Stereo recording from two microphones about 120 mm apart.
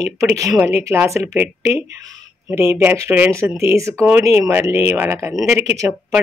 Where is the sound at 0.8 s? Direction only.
20° right (ahead or behind).